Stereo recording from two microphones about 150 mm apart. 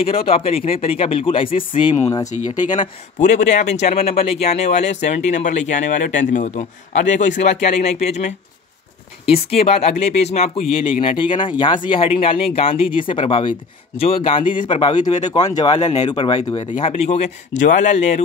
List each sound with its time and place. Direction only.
0.0 s speech: 40° left (ahead or behind)
2.0 s speech: 20° left (ahead or behind)
3.2 s speech: 55° left (ahead or behind)